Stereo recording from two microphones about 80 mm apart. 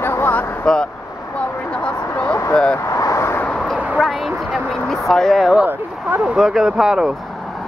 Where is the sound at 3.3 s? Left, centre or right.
Centre.